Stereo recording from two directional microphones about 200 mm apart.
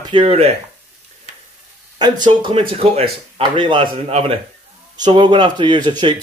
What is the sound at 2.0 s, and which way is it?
Speech, 20° right (ahead or behind).